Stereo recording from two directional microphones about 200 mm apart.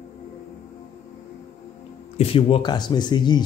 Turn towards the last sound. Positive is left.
turn(degrees=20)  # may be behind; listen again after turning